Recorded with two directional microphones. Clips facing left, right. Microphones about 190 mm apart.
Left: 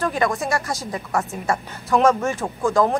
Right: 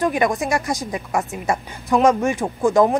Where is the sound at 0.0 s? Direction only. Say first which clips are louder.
Right 2 dB; 15° right (ahead or behind).